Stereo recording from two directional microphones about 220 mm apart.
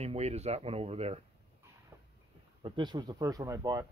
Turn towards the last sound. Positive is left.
turn(degrees=-15)  # may be behind; listen again after turning